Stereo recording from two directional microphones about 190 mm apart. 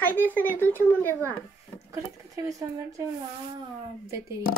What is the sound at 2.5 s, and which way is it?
Speech, 15° right (ahead or behind).